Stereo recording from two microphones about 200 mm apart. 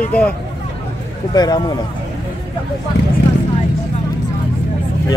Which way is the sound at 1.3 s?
20° left (ahead or behind).